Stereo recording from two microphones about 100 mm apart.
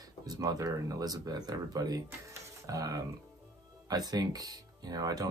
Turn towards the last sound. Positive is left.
turn(degrees=-40)  # may be behind; listen again after turning